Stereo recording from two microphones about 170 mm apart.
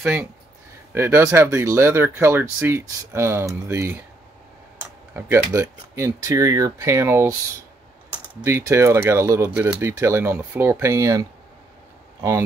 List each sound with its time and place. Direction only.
0.0 s speech: 10° right (ahead or behind)
5.1 s speech: 15° right (ahead or behind)
8.4 s speech: 15° right (ahead or behind)